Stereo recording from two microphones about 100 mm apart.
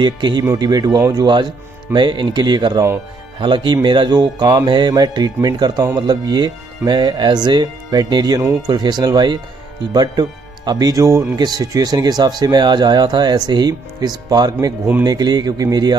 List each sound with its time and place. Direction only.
0.0 s speech: 50° right (ahead or behind)